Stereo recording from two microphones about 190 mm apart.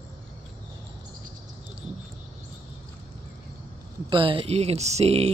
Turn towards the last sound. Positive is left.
turn(degrees=-35)  # may be behind; listen again after turning